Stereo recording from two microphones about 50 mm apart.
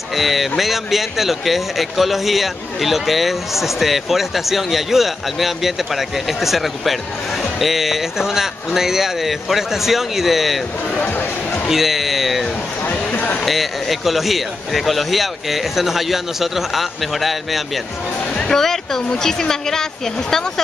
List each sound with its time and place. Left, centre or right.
0.1 s speech: centre
11.6 s speech: centre
13.1 s a sound: left
13.4 s speech: centre